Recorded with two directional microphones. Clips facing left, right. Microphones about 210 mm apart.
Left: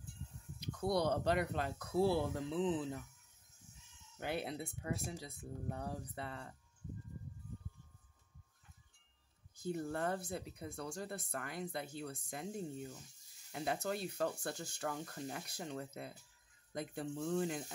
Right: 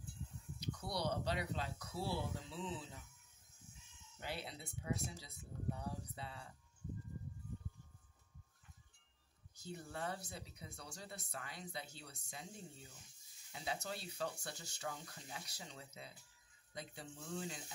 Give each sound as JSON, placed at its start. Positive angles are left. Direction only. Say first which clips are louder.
{"t": 0.6, "sound": "speech", "louder": "left 8 dB", "side_deg": 55}
{"t": 4.2, "sound": "speech", "louder": "left 7 dB", "side_deg": 55}
{"t": 9.6, "sound": "speech", "louder": "left 8 dB", "side_deg": 50}